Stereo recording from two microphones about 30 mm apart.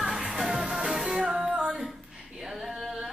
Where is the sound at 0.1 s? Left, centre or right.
Right.